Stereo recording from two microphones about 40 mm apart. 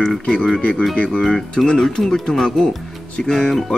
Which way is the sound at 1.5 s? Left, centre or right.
Centre.